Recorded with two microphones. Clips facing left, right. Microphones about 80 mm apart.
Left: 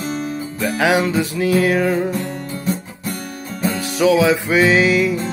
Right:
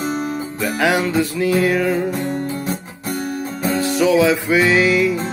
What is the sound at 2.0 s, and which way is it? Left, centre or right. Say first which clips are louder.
Guitar: right 2 dB; right.